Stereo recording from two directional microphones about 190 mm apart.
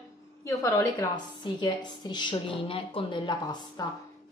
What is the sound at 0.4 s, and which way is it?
A woman's voice, 15° left (ahead or behind).